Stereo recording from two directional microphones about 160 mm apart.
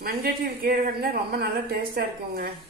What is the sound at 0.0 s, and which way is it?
Speech, 65° right (ahead or behind).